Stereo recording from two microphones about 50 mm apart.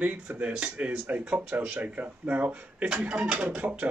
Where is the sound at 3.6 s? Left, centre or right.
Right.